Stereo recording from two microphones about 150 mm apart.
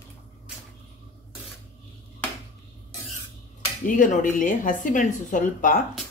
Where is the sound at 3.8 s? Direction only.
60° left (ahead or behind).